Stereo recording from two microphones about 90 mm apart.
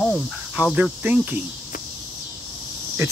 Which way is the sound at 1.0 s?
20° right (ahead or behind).